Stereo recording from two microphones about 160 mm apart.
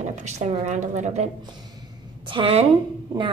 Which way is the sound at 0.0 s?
45° right (ahead or behind).